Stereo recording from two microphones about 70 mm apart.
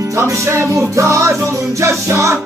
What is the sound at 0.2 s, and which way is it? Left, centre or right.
Music, right.